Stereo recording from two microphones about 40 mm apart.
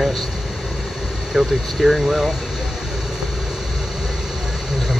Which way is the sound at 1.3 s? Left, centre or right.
Centre.